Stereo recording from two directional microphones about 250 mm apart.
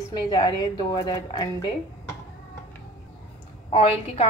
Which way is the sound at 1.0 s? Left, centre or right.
Centre.